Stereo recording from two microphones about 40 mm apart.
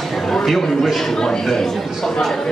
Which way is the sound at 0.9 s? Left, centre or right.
Centre.